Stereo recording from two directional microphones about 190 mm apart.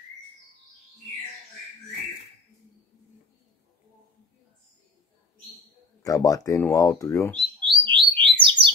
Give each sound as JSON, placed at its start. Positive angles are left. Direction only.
{"t": 6.0, "sound": "speech", "side_deg": 20}
{"t": 7.6, "sound": "bird", "side_deg": -25}